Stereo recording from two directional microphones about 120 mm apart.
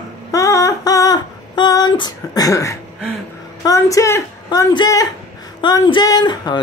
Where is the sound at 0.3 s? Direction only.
25° left (ahead or behind).